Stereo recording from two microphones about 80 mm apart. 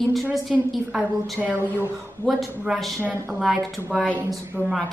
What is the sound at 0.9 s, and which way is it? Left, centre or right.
A woman's voice, right.